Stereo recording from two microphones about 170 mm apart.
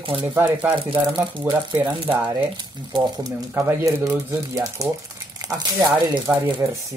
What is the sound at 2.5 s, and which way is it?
Speech, 25° right (ahead or behind).